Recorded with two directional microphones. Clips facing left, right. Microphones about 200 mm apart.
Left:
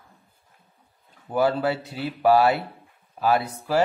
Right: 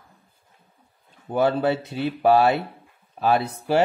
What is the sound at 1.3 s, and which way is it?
Speech, 25° right (ahead or behind).